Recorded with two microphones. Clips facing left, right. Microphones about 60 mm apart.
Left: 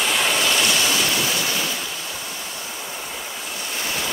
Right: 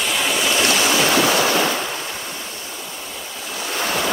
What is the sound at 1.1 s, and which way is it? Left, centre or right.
Waves, right.